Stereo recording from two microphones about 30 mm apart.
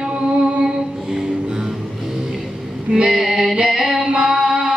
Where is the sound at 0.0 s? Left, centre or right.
Right.